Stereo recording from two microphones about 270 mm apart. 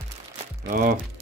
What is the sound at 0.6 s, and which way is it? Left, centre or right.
Speech, right.